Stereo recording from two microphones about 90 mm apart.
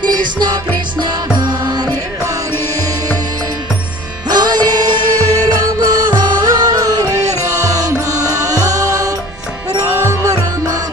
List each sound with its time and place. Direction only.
0.0 s music: 55° right (ahead or behind)
4.3 s music: 50° right (ahead or behind)